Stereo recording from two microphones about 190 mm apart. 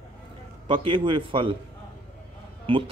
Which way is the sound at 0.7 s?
25° right (ahead or behind).